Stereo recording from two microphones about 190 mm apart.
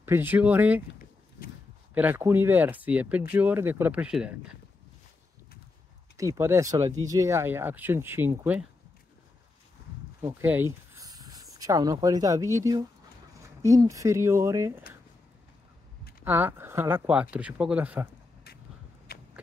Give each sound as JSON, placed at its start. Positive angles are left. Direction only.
{"t": 0.0, "sound": "speech", "side_deg": -10}
{"t": 2.0, "sound": "speech", "side_deg": -10}
{"t": 6.1, "sound": "speech", "side_deg": -15}
{"t": 10.2, "sound": "speech", "side_deg": -10}
{"t": 16.3, "sound": "speech", "side_deg": -10}